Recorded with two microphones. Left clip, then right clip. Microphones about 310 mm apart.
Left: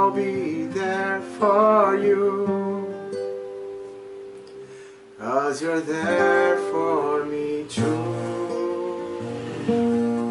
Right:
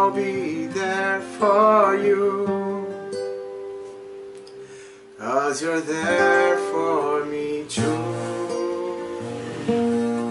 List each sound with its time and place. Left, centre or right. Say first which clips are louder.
0.0 s music: even; centre
5.2 s music: right 1 dB; centre